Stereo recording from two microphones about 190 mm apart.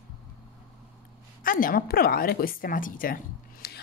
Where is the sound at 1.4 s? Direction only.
50° left (ahead or behind).